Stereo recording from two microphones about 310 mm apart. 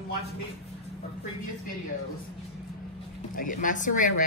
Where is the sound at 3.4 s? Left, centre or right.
Left.